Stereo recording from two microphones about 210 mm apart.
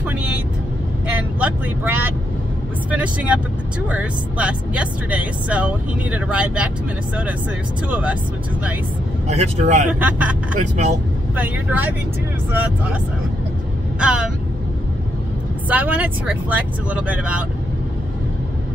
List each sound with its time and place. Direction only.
1.4 s speech: 10° right (ahead or behind)
7.9 s speech: 5° right (ahead or behind)
9.3 s speech: 30° right (ahead or behind)
9.9 s speech: 5° right (ahead or behind)
10.5 s speech: 35° right (ahead or behind)
11.3 s speech: 10° right (ahead or behind)
13.9 s speech: 5° right (ahead or behind)
15.7 s speech: 5° right (ahead or behind)